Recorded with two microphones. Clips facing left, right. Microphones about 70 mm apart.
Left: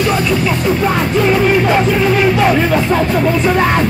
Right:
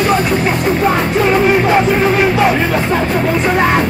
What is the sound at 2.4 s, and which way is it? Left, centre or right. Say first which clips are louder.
Speech: left 1 dB; centre.